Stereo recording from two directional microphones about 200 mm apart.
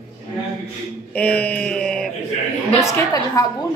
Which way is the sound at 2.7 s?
15° left (ahead or behind).